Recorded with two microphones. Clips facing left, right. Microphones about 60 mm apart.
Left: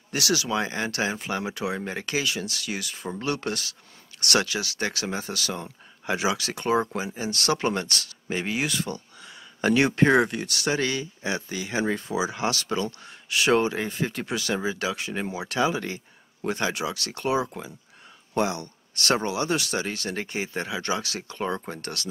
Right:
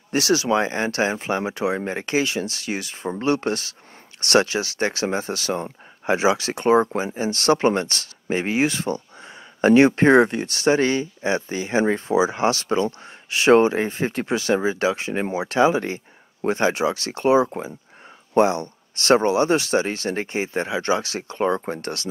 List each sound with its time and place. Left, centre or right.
0.1 s speech: right